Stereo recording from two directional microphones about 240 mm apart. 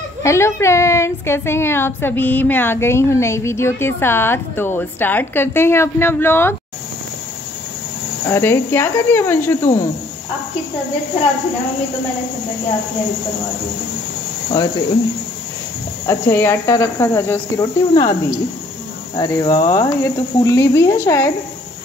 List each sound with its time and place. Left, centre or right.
0.2 s a woman's voice: centre
8.3 s a woman's voice: centre
14.5 s a woman's voice: centre
16.1 s a woman's voice: centre
19.1 s a woman's voice: centre